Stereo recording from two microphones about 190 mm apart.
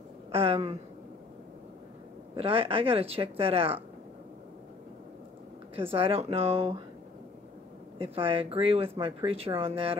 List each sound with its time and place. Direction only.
0.3 s speech: 30° right (ahead or behind)
2.3 s speech: 30° right (ahead or behind)
5.8 s speech: 30° right (ahead or behind)
8.0 s speech: 30° right (ahead or behind)